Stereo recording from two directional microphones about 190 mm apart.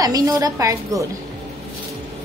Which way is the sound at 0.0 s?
20° right (ahead or behind).